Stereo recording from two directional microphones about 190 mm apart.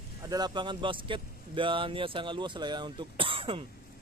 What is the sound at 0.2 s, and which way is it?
Speech, 20° right (ahead or behind).